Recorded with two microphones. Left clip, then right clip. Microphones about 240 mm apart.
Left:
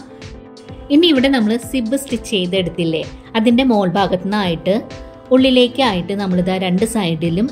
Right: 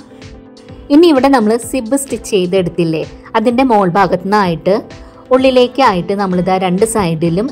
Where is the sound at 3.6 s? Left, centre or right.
Right.